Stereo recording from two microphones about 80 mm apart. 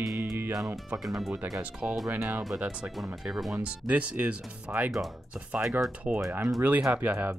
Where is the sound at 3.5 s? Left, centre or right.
Centre.